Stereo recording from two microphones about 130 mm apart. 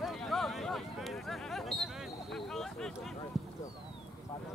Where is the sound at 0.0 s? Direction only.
Centre (ahead or behind).